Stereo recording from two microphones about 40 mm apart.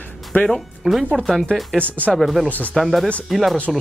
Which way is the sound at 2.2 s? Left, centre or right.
Centre.